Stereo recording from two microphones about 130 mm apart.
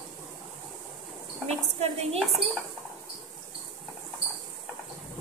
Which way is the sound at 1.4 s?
50° right (ahead or behind).